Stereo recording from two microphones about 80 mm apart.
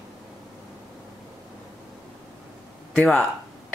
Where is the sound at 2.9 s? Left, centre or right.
Centre.